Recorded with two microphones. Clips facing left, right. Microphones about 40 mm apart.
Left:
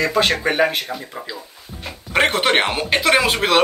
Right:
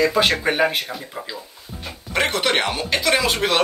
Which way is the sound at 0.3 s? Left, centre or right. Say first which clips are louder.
Left 1 dB; centre.